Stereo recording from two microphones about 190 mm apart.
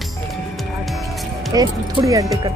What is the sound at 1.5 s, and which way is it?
Speech, 20° right (ahead or behind).